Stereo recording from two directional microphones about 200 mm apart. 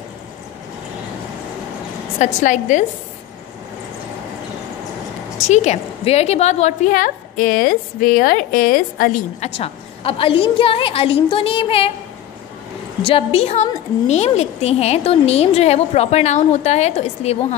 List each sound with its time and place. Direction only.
2.1 s a woman's voice: 35° left (ahead or behind)
5.5 s a woman's voice: 35° left (ahead or behind)
9.4 s a woman's voice: 30° left (ahead or behind)
13.0 s a woman's voice: 30° left (ahead or behind)